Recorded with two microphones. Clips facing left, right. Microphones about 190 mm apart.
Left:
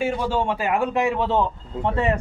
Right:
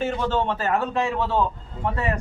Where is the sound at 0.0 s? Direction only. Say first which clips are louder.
Left 1 dB; 10° left (ahead or behind).